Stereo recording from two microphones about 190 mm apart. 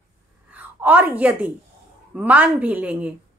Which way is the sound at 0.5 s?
10° right (ahead or behind).